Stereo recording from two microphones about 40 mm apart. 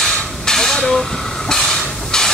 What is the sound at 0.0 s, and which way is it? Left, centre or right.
Hiss, centre.